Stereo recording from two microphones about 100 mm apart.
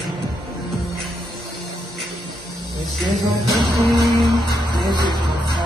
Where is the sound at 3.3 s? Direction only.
50° right (ahead or behind).